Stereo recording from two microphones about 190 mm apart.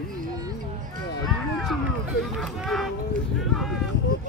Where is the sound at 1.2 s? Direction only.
Centre (ahead or behind).